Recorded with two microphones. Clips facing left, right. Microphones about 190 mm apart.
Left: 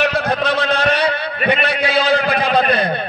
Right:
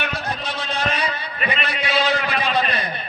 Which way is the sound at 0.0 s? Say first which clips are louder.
Left 10 dB; 65° left (ahead or behind).